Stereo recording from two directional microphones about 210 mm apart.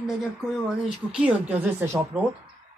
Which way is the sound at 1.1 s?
5° right (ahead or behind).